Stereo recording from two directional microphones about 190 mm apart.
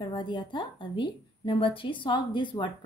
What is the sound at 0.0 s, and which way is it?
A woman's voice, 25° left (ahead or behind).